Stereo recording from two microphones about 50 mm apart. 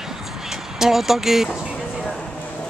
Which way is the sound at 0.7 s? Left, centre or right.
Centre.